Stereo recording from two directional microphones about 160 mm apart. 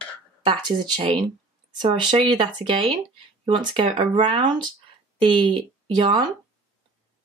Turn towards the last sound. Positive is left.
turn(degrees=-30)  # may be behind; listen again after turning